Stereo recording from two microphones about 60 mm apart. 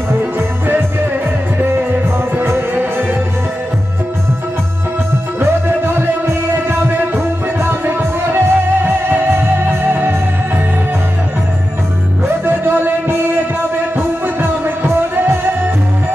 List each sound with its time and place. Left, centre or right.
2.7 s music: right
5.4 s music: right
12.4 s a sound: right
13.9 s music: right